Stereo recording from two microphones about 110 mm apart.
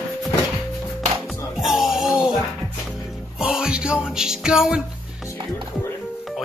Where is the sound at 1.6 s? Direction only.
5° right (ahead or behind).